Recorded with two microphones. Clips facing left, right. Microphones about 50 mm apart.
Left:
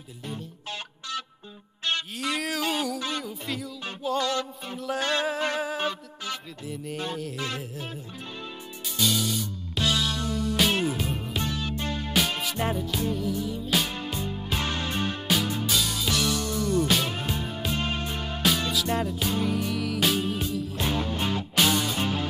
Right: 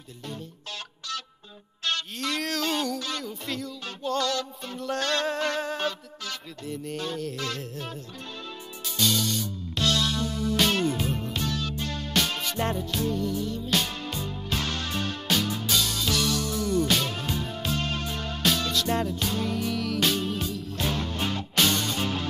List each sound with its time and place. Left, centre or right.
0.3 s music: centre
2.1 s a sound: centre
3.0 s music: centre
3.3 s music: centre
7.0 s music: centre
7.7 s music: centre
15.2 s music: centre
17.1 s music: centre
18.7 s music: centre